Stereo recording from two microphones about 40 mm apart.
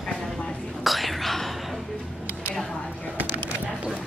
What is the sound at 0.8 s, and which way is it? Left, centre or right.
Whispering, centre.